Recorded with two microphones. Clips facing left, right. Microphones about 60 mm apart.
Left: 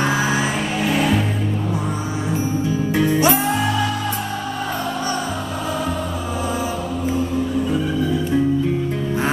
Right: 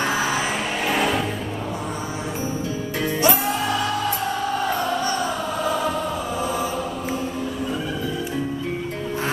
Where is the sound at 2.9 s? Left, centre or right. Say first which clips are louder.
Left 4 dB; left.